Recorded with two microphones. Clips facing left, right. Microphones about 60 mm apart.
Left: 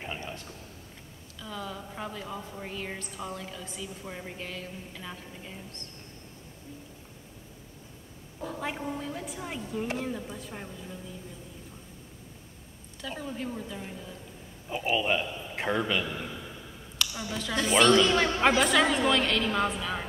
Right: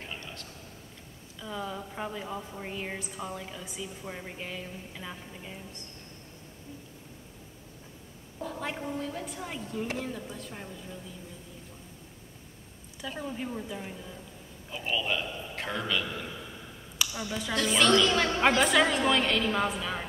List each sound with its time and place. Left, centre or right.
0.0 s a sound: centre
1.4 s a woman's voice: centre
8.5 s a woman's voice: centre
13.2 s a woman's voice: centre
14.7 s a man's voice: left
17.0 s a woman's voice: centre
17.6 s a woman's voice: centre